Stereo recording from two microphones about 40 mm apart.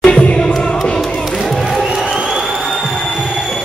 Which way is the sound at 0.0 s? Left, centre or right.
Left.